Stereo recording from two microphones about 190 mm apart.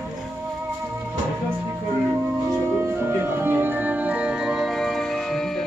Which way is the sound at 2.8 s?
10° right (ahead or behind).